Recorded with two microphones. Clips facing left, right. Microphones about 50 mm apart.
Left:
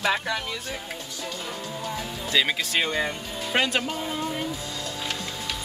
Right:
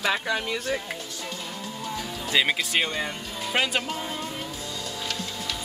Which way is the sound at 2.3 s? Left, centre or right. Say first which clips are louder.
Even; centre.